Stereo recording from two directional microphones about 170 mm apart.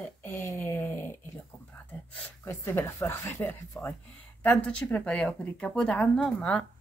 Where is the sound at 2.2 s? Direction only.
15° left (ahead or behind).